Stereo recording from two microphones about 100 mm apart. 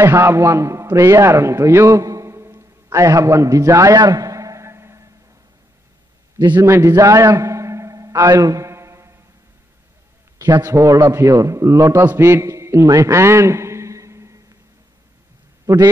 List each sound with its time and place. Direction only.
0.0 s a man's voice: 25° right (ahead or behind)
4.0 s a sound: 35° right (ahead or behind)
6.6 s a man's voice: 30° right (ahead or behind)
7.0 s a sound: 35° right (ahead or behind)
10.4 s a man's voice: 30° right (ahead or behind)
15.6 s a man's voice: 40° right (ahead or behind)